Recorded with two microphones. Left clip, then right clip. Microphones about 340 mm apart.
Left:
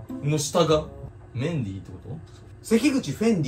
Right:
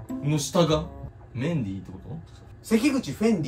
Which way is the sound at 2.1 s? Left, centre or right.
Centre.